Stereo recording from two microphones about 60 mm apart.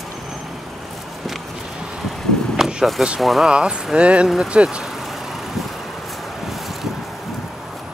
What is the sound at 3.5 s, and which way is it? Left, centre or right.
Speech, centre.